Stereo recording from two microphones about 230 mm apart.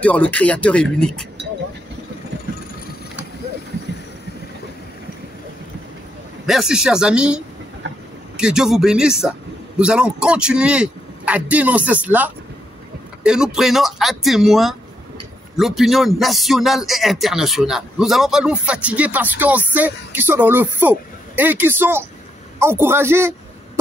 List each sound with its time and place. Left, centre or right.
0.0 s a man's voice: centre
6.4 s a man's voice: centre
7.8 s a sound: right
8.4 s a man's voice: centre